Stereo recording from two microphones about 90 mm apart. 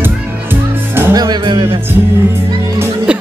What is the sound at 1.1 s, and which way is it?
Music, 50° right (ahead or behind).